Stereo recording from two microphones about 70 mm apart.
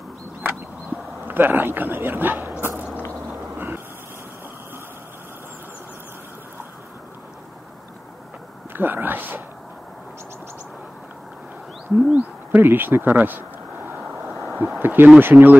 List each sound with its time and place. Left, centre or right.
0.4 s a sound: right
3.5 s vehicle: right
8.7 s speech: right
12.1 s owl: right
14.3 s a sound: right
14.8 s speech: right